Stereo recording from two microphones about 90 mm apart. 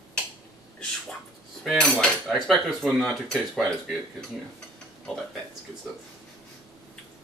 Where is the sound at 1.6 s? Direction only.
5° left (ahead or behind).